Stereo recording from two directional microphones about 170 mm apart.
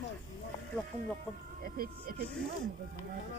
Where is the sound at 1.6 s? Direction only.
60° right (ahead or behind).